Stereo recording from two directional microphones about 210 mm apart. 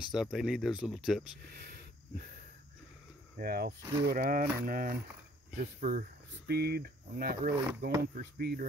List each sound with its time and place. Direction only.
0.1 s speech: centre (ahead or behind)
3.3 s speech: 45° right (ahead or behind)
3.8 s speech: 15° right (ahead or behind)
4.1 s speech: 45° right (ahead or behind)